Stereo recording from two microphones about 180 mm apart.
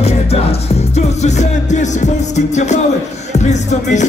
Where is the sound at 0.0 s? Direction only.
35° left (ahead or behind).